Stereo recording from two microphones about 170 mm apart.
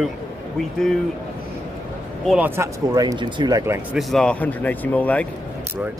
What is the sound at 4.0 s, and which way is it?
Speech, centre (ahead or behind).